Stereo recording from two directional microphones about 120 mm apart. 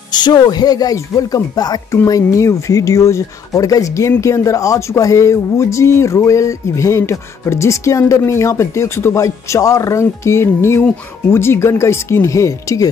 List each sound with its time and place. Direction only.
0.1 s speech: 35° left (ahead or behind)